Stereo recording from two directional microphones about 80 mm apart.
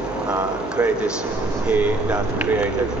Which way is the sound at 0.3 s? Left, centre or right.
Centre.